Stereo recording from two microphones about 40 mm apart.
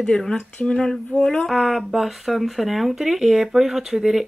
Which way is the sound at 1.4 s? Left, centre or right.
Centre.